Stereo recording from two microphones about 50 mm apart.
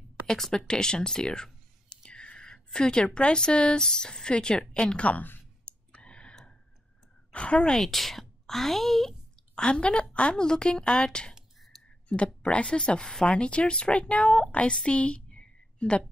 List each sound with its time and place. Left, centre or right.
0.3 s whispering: centre
3.2 s a woman's voice: centre
4.9 s a woman's voice: left
5.7 s clicking: left
7.3 s a woman's voice: left
7.7 s speech: centre
9.6 s a woman's voice: centre
12.4 s a woman's voice: left
15.0 s a sound: left